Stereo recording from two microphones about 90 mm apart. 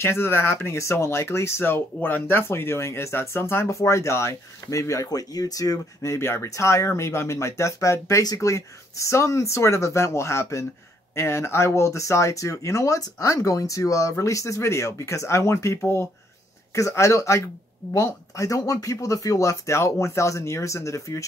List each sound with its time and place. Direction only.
0.0 s speech: 25° left (ahead or behind)
6.1 s speech: 30° left (ahead or behind)